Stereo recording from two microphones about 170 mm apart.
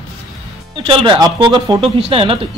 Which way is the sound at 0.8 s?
30° right (ahead or behind).